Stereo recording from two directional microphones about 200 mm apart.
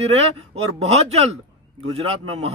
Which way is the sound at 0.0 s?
30° right (ahead or behind).